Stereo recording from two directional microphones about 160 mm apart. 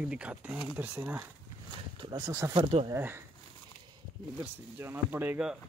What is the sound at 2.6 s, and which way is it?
Speech, 40° right (ahead or behind).